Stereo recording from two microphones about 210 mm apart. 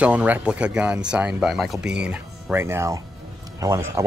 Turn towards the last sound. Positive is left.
turn(degrees=-15)  # may be behind; listen again after turning